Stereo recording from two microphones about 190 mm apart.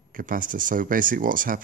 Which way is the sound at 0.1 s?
45° right (ahead or behind).